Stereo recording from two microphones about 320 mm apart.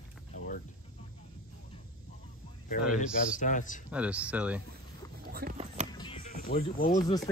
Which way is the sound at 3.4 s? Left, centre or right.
Left.